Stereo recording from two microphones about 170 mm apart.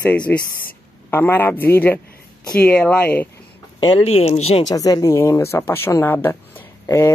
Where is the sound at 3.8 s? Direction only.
35° left (ahead or behind).